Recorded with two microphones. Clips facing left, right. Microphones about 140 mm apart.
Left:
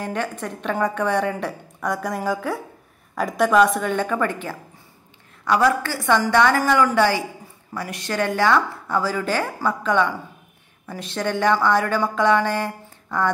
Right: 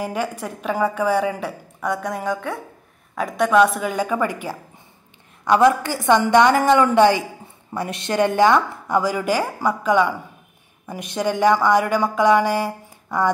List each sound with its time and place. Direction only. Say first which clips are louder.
0.0 s a woman's voice: right 2 dB; 10° right (ahead or behind)